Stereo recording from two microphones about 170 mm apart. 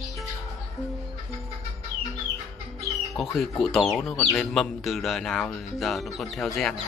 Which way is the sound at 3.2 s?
Centre (ahead or behind).